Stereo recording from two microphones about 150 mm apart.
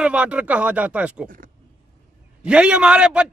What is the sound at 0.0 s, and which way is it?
Speech, 10° right (ahead or behind).